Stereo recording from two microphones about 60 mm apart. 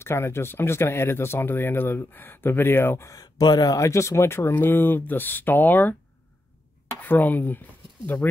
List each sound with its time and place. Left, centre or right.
0.0 s speech: left
3.1 s speech: left
3.8 s speech: left
7.0 s speech: left